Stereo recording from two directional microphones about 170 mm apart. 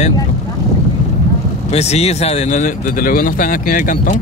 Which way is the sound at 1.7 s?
40° left (ahead or behind).